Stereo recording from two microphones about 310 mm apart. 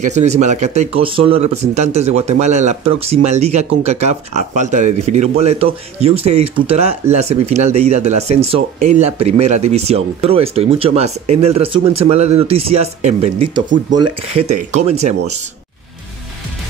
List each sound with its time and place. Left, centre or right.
0.0 s speech: right